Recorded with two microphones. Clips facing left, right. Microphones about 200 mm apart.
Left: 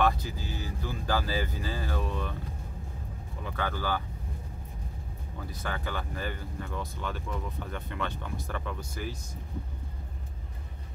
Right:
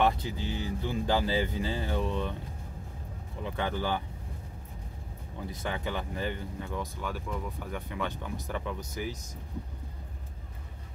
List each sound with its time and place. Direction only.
0.0 s speech: 25° right (ahead or behind)
3.4 s speech: 20° right (ahead or behind)
5.5 s speech: 20° right (ahead or behind)